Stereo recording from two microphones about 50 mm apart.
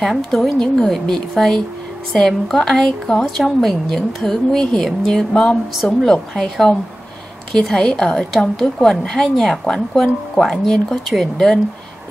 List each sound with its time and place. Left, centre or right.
0.0 s a woman's voice: centre
7.5 s a woman's voice: centre
8.3 s a woman's voice: centre
10.4 s a woman's voice: centre